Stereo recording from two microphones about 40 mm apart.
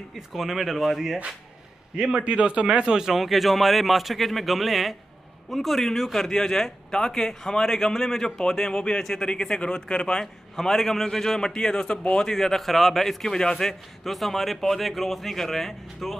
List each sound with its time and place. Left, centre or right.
0.3 s a man's voice: centre
2.1 s a man's voice: right
3.2 s a man's voice: centre
9.3 s speech: left
10.2 s a man's voice: centre